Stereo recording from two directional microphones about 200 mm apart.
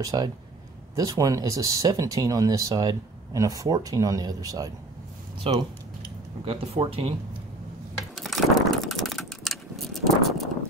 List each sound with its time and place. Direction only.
0.0 s speech: 20° right (ahead or behind)
5.4 s speech: 30° right (ahead or behind)
8.2 s a sound: centre (ahead or behind)